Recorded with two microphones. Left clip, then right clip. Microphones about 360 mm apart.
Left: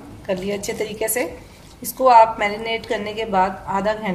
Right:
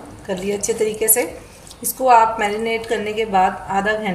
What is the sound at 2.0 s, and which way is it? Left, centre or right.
A woman's voice, centre.